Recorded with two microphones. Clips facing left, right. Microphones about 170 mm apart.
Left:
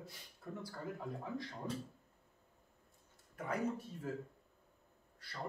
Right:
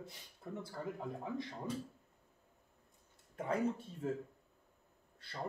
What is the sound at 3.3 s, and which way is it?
Speech, 25° right (ahead or behind).